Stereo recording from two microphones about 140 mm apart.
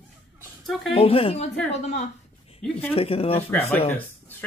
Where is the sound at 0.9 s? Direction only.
45° left (ahead or behind).